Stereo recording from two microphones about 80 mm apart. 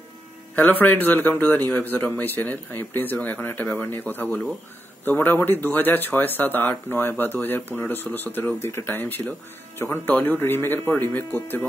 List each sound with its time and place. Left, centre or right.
0.6 s speech: left